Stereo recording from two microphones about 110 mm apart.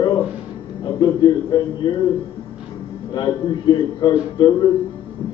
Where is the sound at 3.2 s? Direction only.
40° left (ahead or behind).